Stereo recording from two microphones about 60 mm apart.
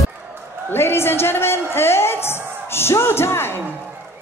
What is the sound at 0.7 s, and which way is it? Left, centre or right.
Music, left.